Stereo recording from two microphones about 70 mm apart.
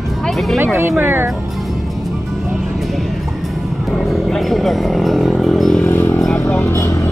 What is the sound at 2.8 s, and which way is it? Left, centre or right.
Music, centre.